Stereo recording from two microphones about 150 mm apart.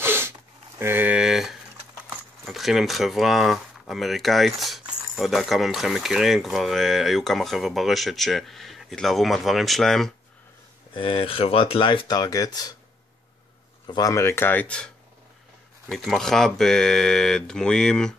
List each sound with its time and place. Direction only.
0.0 s snort: 15° right (ahead or behind)
0.7 s a sound: 15° right (ahead or behind)
2.4 s speech: centre (ahead or behind)
11.0 s speech: 40° left (ahead or behind)
13.8 s speech: 25° left (ahead or behind); by 14.9 s 10° left (ahead or behind)
15.9 s speech: centre (ahead or behind)